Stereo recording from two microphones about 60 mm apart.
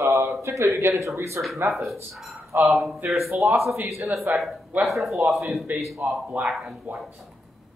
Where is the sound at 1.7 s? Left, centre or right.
Centre.